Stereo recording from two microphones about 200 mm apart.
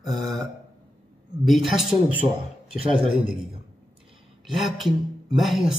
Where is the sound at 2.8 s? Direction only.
30° right (ahead or behind).